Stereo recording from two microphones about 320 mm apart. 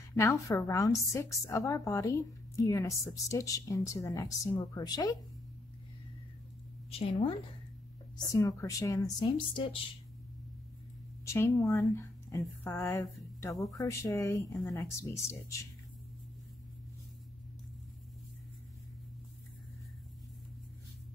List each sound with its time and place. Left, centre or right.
0.1 s a woman's voice: centre
6.9 s a woman's voice: centre
11.2 s a woman's voice: centre